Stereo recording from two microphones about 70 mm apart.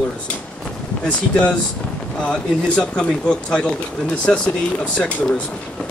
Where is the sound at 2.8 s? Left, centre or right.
Centre.